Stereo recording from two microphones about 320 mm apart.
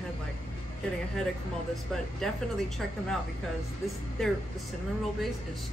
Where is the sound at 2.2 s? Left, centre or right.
Centre.